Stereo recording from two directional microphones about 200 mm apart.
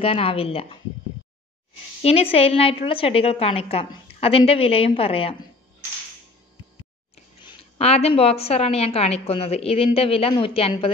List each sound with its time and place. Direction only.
0.0 s a woman's voice: 30° left (ahead or behind)
2.0 s a woman's voice: 30° left (ahead or behind)
7.4 s a woman's voice: 30° left (ahead or behind)